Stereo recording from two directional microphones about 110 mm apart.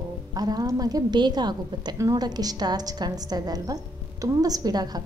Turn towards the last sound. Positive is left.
turn(degrees=-35)  # may be behind; listen again after turning